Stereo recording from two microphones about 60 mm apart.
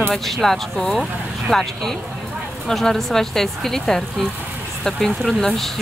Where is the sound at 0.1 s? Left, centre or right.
Centre.